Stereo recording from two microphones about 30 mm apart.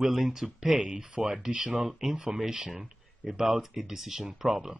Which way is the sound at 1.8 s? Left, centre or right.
Centre.